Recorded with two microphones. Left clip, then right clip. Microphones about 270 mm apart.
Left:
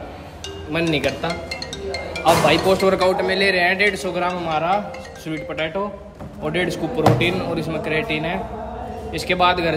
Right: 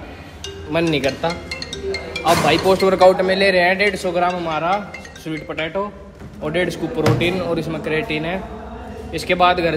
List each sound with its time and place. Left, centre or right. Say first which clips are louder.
0.7 s a man's voice: right 2 dB; centre
1.5 s music: right 2 dB; left
2.2 s a man's voice: even; centre
3.0 s a man's voice: right 5 dB; centre